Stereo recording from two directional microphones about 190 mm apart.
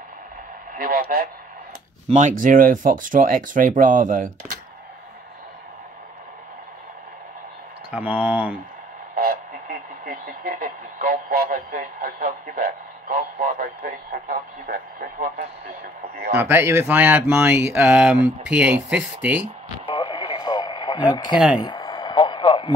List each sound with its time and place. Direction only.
0.7 s speech: 50° right (ahead or behind)
2.0 s speech: 40° right (ahead or behind)
7.9 s speech: 10° right (ahead or behind)
9.1 s speech: 50° right (ahead or behind)
16.3 s speech: 10° right (ahead or behind)
20.0 s radio: 25° left (ahead or behind)
21.1 s speech: 20° left (ahead or behind)
21.5 s a sound: 20° left (ahead or behind)